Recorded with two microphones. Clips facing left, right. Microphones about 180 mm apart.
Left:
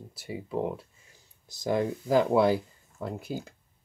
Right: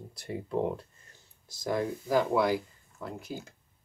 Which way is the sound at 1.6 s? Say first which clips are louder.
Left 3 dB; 25° left (ahead or behind).